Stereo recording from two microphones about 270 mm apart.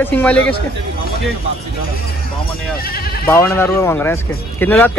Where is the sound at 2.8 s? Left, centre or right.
Left.